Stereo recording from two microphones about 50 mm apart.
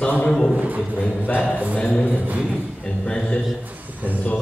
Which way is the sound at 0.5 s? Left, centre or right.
Right.